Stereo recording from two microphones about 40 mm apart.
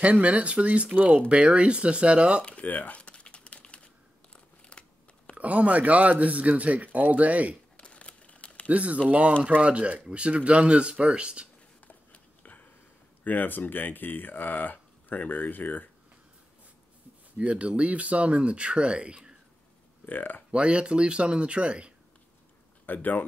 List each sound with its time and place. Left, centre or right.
0.0 s a man's voice: right
2.6 s typing: left
4.6 s crumpling: left
5.3 s a man's voice: right
7.7 s a sound: left
8.6 s a man's voice: right
11.9 s a sound: left
13.2 s speech: left
17.4 s a man's voice: right
20.1 s speech: left
20.5 s speech: right
22.8 s speech: left